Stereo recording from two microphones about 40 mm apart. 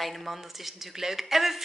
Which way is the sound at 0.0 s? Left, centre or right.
Centre.